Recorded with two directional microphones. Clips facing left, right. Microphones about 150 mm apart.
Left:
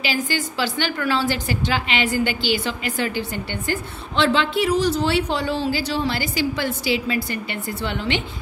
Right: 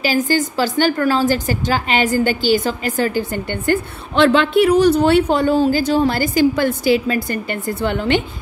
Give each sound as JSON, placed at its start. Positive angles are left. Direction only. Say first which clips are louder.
{"t": 0.0, "sound": "a woman's voice", "louder": "right 7 dB", "side_deg": -45}